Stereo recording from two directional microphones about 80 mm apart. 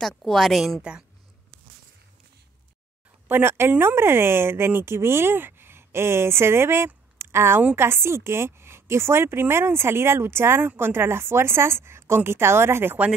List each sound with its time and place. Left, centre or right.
0.2 s a woman's voice: centre
3.3 s speech: right
7.2 s a sound: right
7.7 s speech: right